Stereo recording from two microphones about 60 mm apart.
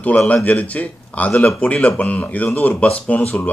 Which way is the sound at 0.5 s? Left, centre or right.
Left.